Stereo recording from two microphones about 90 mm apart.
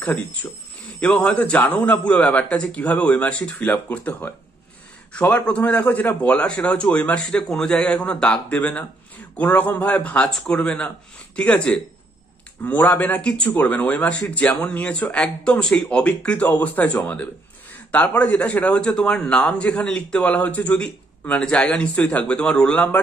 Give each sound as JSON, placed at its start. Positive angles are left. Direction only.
{"t": 1.0, "sound": "a man's voice", "side_deg": 10}
{"t": 5.3, "sound": "a man's voice", "side_deg": 15}